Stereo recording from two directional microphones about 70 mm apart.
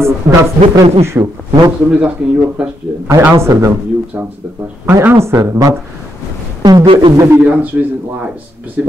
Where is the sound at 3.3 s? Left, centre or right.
Right.